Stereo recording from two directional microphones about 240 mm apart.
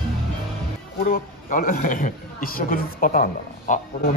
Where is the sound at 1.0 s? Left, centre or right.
Left.